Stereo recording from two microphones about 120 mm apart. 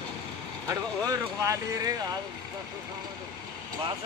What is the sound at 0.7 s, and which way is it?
Speech, 25° right (ahead or behind).